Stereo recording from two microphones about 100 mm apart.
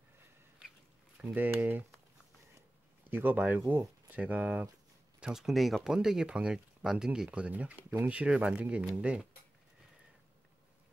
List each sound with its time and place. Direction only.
1.3 s speech: 15° right (ahead or behind)
3.1 s speech: 20° right (ahead or behind)